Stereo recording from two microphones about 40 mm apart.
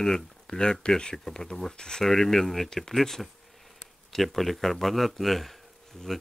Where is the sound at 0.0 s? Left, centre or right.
Centre.